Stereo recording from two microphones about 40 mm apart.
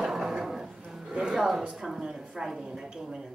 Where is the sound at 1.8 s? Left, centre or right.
Centre.